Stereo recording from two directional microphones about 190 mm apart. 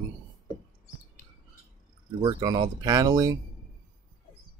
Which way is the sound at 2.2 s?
20° right (ahead or behind).